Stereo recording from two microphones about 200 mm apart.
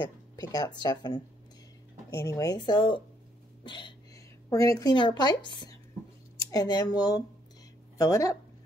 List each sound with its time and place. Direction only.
0.0 s speech: 20° left (ahead or behind)